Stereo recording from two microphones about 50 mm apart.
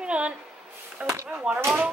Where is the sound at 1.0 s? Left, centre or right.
Right.